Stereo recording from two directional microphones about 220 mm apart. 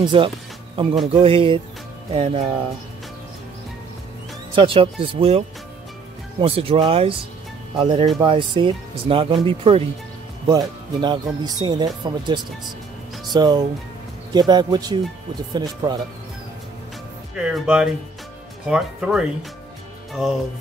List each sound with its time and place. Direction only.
0.1 s speech: 25° right (ahead or behind)
4.6 s speech: 25° right (ahead or behind)
6.4 s speech: 25° right (ahead or behind)
17.5 s speech: 5° right (ahead or behind)